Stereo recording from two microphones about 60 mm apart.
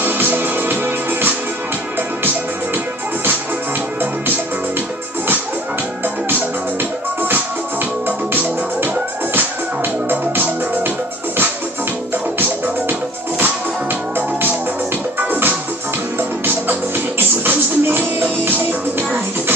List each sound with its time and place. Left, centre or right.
0.0 s music: right
6.8 s music: right
12.4 s music: right